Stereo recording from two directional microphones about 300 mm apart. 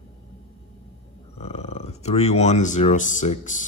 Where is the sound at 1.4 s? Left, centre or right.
Left.